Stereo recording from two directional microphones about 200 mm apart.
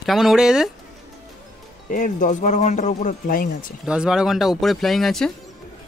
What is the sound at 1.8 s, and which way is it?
Speech, 40° left (ahead or behind).